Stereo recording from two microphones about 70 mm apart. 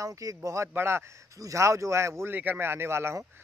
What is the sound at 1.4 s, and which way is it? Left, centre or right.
Speech, right.